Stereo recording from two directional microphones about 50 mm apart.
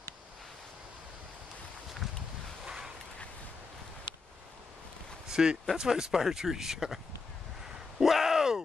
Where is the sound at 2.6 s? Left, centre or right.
Centre.